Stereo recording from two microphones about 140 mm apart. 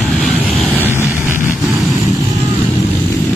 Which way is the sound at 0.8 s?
15° right (ahead or behind).